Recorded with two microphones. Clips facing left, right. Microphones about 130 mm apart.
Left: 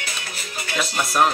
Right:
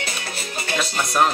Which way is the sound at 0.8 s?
Centre (ahead or behind).